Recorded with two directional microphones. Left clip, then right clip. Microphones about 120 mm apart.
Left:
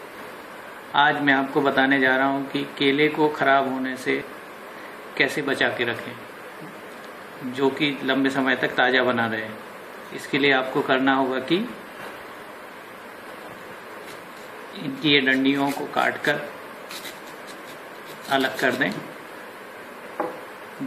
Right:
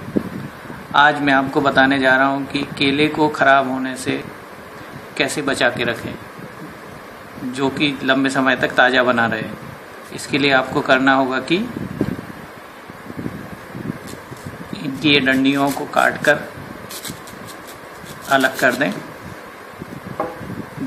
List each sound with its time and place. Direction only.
0.9 s a man's voice: 90° right
7.5 s a man's voice: 90° right
15.0 s a man's voice: 90° right
18.3 s speech: 75° right (ahead or behind)